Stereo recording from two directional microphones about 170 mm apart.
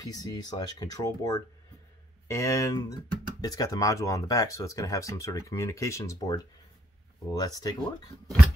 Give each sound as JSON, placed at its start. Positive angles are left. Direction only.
{"t": 0.0, "sound": "speech", "side_deg": 20}